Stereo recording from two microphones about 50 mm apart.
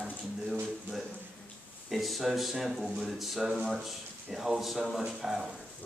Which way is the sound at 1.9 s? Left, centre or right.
Centre.